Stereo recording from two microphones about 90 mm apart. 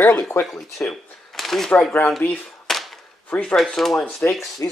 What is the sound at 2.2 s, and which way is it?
Speech, 20° left (ahead or behind).